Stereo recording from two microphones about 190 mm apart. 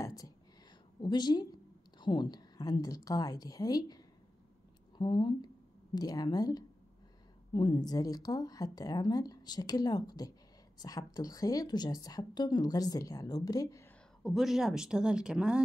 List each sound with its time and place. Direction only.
1.0 s a woman's voice: 25° left (ahead or behind)
14.2 s speech: centre (ahead or behind)